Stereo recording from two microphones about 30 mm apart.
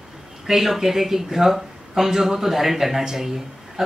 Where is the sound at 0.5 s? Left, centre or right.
Centre.